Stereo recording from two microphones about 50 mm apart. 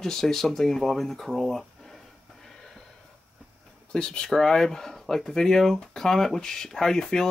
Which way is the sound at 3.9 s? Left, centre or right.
Centre.